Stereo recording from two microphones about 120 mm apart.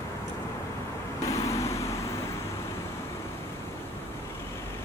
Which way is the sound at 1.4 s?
25° left (ahead or behind).